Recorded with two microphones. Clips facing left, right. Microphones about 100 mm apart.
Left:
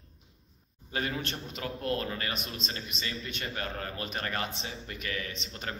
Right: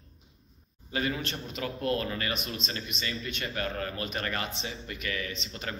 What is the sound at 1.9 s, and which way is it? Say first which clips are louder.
Speech: right 2 dB; 30° left (ahead or behind).